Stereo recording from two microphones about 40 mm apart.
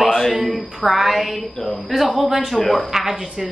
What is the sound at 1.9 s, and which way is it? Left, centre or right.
Music, centre.